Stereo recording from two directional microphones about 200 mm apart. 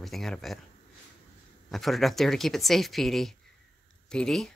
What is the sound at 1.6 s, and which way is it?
Speech, centre (ahead or behind).